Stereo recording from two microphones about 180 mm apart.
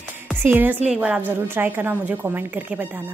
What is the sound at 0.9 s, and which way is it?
Music, 5° right (ahead or behind).